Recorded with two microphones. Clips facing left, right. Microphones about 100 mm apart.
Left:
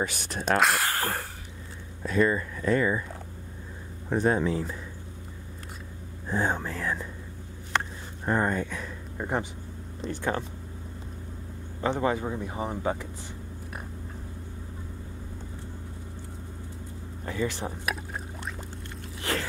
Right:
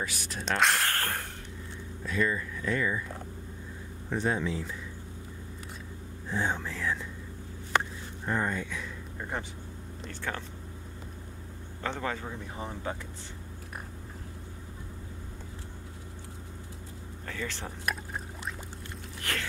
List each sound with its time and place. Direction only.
0.0 s speech: 60° left (ahead or behind)
0.6 s speech: 5° left (ahead or behind)
2.0 s speech: 40° left (ahead or behind)
4.1 s speech: 45° left (ahead or behind)
6.2 s speech: 45° left (ahead or behind)
8.3 s speech: 45° left (ahead or behind)
9.2 s speech: 20° left (ahead or behind)
11.8 s speech: 15° left (ahead or behind)
17.3 s speech: 15° left (ahead or behind)
19.3 s speech: 30° left (ahead or behind)